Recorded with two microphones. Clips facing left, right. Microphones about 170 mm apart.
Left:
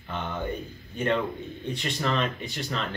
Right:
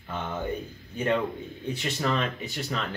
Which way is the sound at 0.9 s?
5° right (ahead or behind).